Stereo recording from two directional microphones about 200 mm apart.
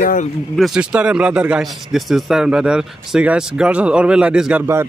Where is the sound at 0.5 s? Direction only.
Centre (ahead or behind).